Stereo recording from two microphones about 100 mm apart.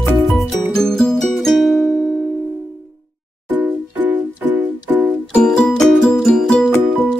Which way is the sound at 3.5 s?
15° right (ahead or behind).